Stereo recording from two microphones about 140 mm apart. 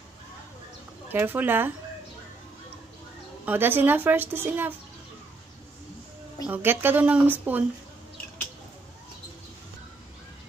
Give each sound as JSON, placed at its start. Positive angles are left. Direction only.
{"t": 1.0, "sound": "speech", "side_deg": -15}
{"t": 3.4, "sound": "speech", "side_deg": -15}
{"t": 6.4, "sound": "speech", "side_deg": -15}